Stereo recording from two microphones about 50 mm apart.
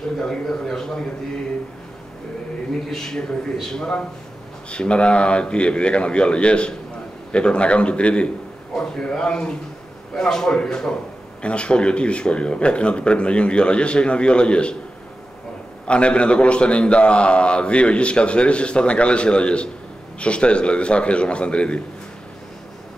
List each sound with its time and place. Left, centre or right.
0.2 s speech: centre
2.9 s speech: centre
4.6 s a man's voice: left
15.9 s a man's voice: left